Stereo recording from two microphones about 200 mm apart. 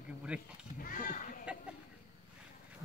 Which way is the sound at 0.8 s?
45° left (ahead or behind).